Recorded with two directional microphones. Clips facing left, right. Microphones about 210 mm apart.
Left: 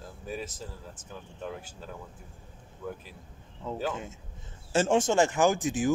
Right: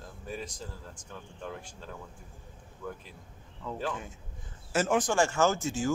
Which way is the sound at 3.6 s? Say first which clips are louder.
Left 2 dB; 25° left (ahead or behind).